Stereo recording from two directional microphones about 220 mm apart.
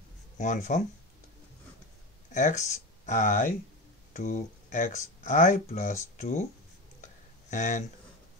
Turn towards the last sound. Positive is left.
turn(degrees=35)  # may be behind; listen again after turning